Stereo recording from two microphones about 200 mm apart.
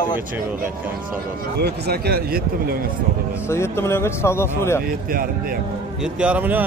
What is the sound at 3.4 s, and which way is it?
Speech, 15° left (ahead or behind).